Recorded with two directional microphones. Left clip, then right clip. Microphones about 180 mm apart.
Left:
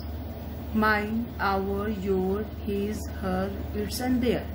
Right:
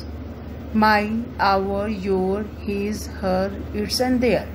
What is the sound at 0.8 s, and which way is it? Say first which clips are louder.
Speech: right 7 dB; 30° right (ahead or behind).